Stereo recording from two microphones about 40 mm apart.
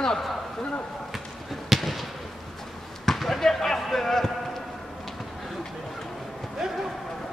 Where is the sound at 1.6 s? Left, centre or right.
Centre.